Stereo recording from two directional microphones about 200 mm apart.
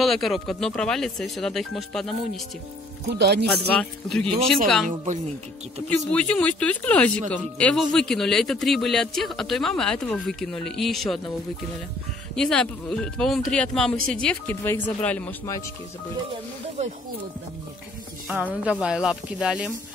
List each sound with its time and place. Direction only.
0.0 s speech: centre (ahead or behind)
3.1 s speech: 55° right (ahead or behind)
3.6 s speech: 5° left (ahead or behind)
4.8 s a woman's voice: 40° right (ahead or behind)
5.9 s speech: 5° left (ahead or behind)
12.4 s speech: 5° left (ahead or behind)
18.3 s speech: 5° right (ahead or behind)